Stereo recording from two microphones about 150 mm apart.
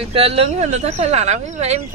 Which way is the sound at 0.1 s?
40° right (ahead or behind).